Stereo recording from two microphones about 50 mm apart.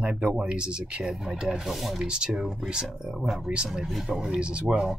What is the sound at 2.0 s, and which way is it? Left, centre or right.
Speech, centre.